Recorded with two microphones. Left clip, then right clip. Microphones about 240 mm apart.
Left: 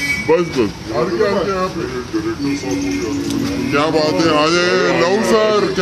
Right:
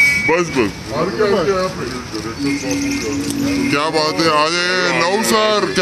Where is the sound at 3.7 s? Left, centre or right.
Right.